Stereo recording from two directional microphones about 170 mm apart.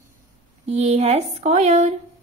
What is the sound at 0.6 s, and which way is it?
Speech, 40° right (ahead or behind).